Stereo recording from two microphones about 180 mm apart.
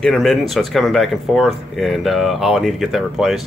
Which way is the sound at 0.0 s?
Centre (ahead or behind).